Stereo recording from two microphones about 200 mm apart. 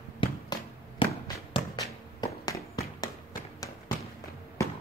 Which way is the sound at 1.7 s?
20° left (ahead or behind).